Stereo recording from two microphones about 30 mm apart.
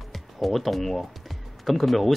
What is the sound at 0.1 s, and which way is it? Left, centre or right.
Speech, centre.